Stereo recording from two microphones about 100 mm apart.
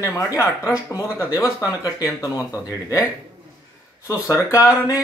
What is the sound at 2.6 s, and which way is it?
Speech, 35° left (ahead or behind).